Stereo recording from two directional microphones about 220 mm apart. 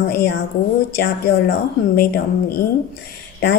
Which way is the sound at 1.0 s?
45° left (ahead or behind).